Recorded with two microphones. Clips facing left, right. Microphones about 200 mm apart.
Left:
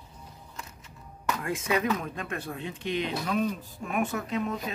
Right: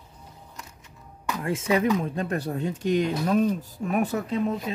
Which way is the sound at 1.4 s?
25° right (ahead or behind).